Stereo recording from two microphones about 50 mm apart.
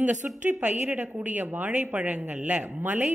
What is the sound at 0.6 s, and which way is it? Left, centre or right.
A woman's voice, right.